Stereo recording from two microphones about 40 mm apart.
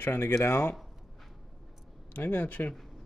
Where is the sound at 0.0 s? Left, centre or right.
Left.